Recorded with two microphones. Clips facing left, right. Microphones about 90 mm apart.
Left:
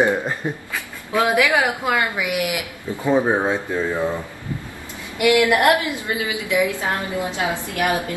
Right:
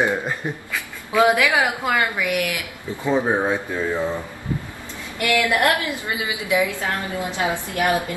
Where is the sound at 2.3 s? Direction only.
15° left (ahead or behind).